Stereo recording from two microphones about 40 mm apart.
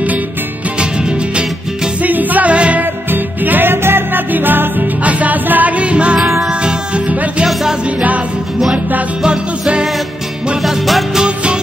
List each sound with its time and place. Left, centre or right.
0.7 s music: right
2.0 s music: right
2.5 s music: right
2.8 s music: right
3.7 s music: right
4.3 s music: right
5.0 s music: right
9.2 s music: right
10.6 s music: centre